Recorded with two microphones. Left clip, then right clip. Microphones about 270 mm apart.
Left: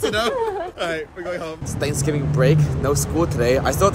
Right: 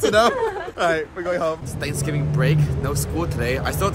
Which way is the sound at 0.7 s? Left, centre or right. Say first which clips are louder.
Right 4 dB; centre.